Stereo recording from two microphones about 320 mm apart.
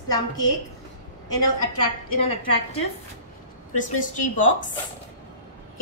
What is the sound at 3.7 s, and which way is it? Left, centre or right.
Speech, left.